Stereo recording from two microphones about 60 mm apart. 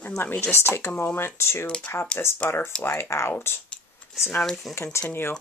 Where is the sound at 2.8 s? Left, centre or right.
Left.